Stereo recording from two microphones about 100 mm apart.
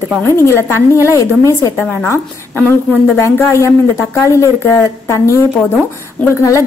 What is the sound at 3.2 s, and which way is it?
A woman's voice, 25° left (ahead or behind).